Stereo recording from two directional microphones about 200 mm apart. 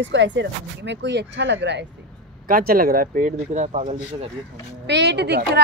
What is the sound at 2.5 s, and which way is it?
Speech, 45° right (ahead or behind).